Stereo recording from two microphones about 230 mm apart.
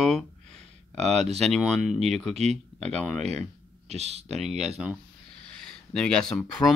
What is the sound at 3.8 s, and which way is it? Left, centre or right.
Speech, right.